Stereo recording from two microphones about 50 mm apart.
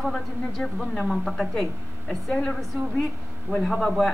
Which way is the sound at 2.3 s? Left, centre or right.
Centre.